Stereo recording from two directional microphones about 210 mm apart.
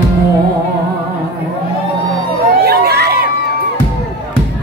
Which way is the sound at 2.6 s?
50° right (ahead or behind).